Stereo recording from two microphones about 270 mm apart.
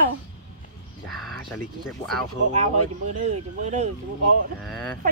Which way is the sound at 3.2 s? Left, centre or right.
Right.